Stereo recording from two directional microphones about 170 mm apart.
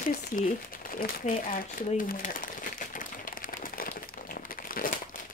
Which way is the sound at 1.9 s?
55° left (ahead or behind).